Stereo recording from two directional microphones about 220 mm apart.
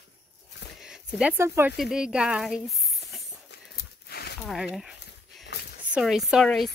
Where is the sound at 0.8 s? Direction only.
5° right (ahead or behind).